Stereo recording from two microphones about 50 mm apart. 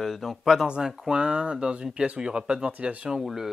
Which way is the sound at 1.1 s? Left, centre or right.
Centre.